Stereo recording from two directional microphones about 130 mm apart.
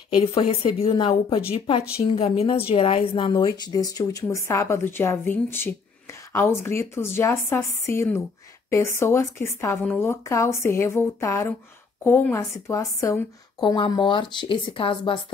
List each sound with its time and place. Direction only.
0.1 s a woman's voice: 45° left (ahead or behind)